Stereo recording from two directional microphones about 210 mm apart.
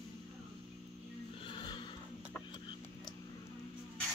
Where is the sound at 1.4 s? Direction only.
25° left (ahead or behind).